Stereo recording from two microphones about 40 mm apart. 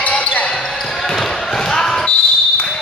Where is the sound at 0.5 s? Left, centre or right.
Centre.